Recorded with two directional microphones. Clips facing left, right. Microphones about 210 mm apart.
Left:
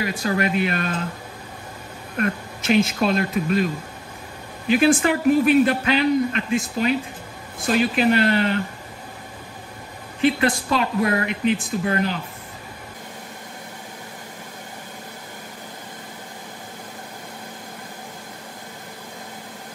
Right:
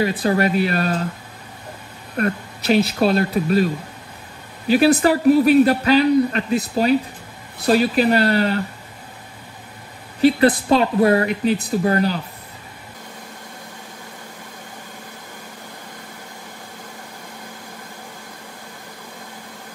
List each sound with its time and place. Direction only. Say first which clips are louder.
0.0 s a woman's voice: right 5 dB; 35° right (ahead or behind)
2.1 s a woman's voice: right 2 dB; 35° right (ahead or behind)
4.8 s a woman's voice: right 3 dB; 40° right (ahead or behind)
10.2 s a woman's voice: right 5 dB; 35° right (ahead or behind)